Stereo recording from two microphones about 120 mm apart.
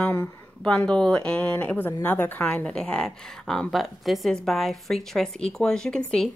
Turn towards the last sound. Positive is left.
turn(degrees=5)  # may be behind; listen again after turning